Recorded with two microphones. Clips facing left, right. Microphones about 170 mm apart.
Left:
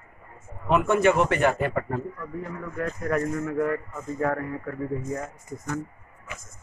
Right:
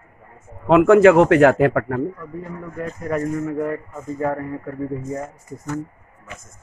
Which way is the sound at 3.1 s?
10° right (ahead or behind).